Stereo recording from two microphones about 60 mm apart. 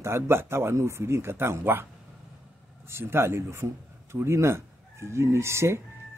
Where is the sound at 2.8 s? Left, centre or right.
Right.